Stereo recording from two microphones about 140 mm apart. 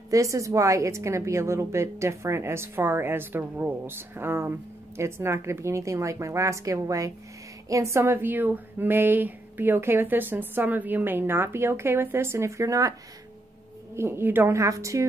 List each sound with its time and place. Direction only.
0.1 s a woman's voice: 25° right (ahead or behind)
13.9 s a woman's voice: 15° right (ahead or behind)